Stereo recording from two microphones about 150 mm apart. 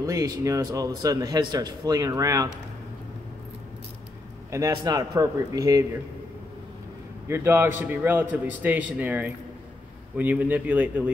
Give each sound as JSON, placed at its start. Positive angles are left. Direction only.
{"t": 0.0, "sound": "speech", "side_deg": -20}
{"t": 4.5, "sound": "speech", "side_deg": -20}
{"t": 7.2, "sound": "a man's voice", "side_deg": -15}